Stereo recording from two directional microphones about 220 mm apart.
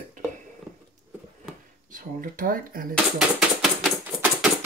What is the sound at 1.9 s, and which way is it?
Speech, 40° right (ahead or behind).